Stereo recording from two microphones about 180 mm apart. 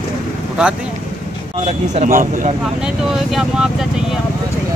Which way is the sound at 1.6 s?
40° right (ahead or behind).